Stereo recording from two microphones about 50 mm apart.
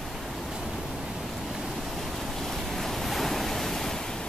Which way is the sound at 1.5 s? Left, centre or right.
Centre.